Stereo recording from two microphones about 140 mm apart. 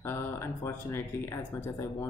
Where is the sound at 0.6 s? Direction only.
20° left (ahead or behind).